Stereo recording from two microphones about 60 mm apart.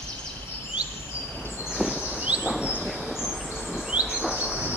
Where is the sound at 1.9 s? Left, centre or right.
Centre.